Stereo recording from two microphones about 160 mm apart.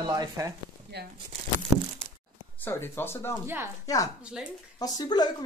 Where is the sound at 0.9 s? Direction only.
90° right.